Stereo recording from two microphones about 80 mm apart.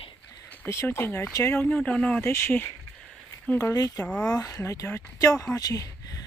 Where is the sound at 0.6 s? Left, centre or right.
Left.